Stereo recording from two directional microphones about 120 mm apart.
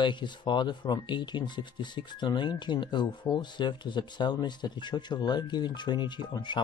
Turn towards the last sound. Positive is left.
turn(degrees=40)  # may be behind; listen again after turning